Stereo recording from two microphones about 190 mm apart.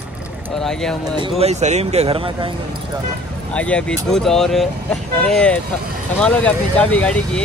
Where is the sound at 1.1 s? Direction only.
30° right (ahead or behind).